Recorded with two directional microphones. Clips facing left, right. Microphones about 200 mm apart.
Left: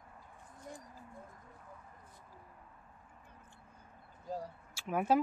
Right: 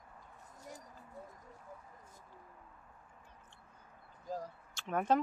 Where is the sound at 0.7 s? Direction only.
40° right (ahead or behind).